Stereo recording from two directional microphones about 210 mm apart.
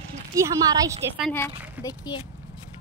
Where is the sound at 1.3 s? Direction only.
15° left (ahead or behind).